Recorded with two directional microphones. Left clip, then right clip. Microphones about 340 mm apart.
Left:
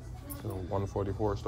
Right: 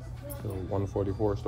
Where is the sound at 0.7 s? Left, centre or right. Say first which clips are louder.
Right 3 dB; centre.